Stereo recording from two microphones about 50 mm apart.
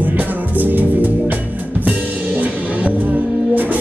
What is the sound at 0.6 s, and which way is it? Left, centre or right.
Music, right.